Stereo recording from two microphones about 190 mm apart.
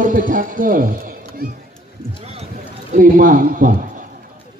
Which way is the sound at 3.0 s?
45° right (ahead or behind).